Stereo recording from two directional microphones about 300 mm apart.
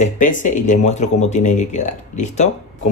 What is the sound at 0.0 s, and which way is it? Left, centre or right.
Speech, left.